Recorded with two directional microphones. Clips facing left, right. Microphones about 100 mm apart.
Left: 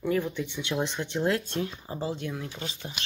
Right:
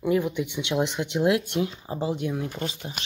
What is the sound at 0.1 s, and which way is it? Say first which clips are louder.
Speech: right 5 dB; 15° right (ahead or behind).